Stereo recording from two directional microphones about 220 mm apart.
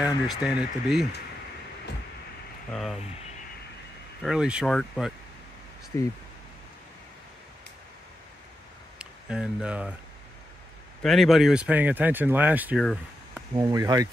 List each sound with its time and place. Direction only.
0.0 s speech: 5° right (ahead or behind)
2.7 s speech: centre (ahead or behind)
4.2 s speech: 5° right (ahead or behind)
5.9 s speech: 10° left (ahead or behind)
8.9 s speech: 5° right (ahead or behind)
11.0 s speech: centre (ahead or behind); by 14.0 s 15° right (ahead or behind)